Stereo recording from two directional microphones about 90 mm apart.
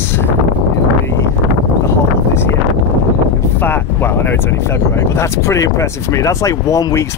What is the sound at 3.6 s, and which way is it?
Speech, 25° left (ahead or behind).